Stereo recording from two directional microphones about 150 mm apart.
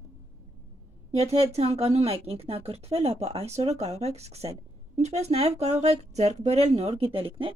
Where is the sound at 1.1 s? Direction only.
45° right (ahead or behind).